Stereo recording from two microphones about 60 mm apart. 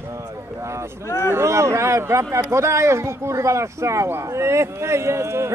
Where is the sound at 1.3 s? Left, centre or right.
Right.